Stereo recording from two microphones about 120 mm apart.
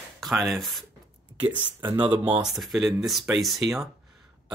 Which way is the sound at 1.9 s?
15° right (ahead or behind).